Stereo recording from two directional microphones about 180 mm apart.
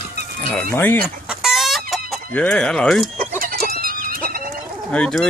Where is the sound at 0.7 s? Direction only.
10° left (ahead or behind).